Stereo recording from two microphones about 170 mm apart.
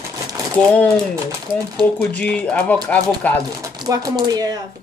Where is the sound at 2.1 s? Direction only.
5° left (ahead or behind).